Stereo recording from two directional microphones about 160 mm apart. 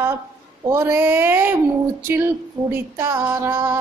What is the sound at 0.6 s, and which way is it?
Music, 15° right (ahead or behind).